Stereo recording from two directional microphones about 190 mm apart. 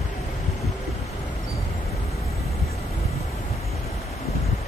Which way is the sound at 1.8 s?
35° left (ahead or behind).